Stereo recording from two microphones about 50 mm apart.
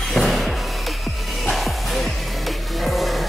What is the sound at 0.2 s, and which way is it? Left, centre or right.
Music, centre.